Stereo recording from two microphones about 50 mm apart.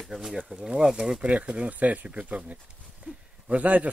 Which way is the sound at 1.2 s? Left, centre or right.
Right.